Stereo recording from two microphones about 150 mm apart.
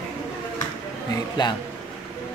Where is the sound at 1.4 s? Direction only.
30° left (ahead or behind).